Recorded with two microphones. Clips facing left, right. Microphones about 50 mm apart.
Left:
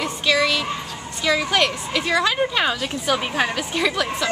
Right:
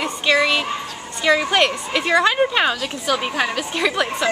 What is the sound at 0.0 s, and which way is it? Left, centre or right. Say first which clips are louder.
A woman's voice: right 2 dB; centre.